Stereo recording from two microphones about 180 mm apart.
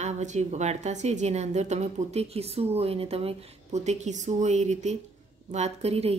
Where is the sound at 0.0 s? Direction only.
40° right (ahead or behind).